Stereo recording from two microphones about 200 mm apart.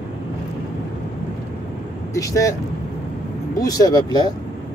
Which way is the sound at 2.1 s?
15° left (ahead or behind).